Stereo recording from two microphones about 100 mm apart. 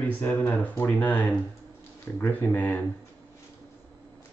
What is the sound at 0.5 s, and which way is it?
Speech, 15° left (ahead or behind).